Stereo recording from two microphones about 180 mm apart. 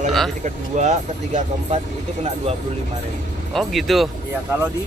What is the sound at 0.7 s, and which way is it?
Speech, 40° right (ahead or behind).